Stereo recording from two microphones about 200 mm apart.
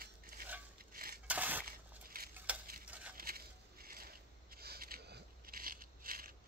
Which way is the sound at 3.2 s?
50° right (ahead or behind).